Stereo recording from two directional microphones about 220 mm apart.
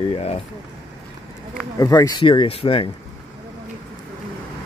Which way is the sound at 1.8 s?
15° left (ahead or behind).